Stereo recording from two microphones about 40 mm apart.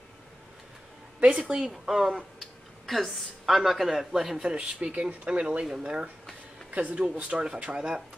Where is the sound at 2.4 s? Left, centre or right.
Centre.